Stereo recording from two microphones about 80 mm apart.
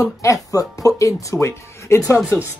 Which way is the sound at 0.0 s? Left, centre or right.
Left.